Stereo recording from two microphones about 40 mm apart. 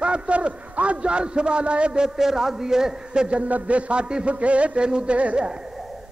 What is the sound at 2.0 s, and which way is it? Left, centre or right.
A man's voice, centre.